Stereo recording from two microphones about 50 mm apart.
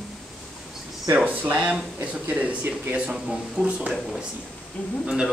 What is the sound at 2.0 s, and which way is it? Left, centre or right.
Speech, right.